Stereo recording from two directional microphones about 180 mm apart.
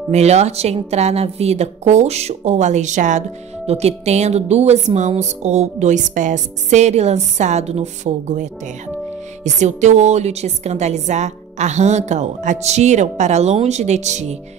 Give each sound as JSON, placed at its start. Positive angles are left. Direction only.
{"t": 0.1, "sound": "a woman's voice", "side_deg": -35}